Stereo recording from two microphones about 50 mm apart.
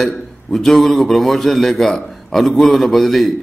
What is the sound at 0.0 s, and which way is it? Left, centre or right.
A man's voice, centre.